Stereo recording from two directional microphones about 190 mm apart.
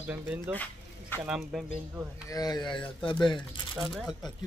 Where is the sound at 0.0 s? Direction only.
5° right (ahead or behind).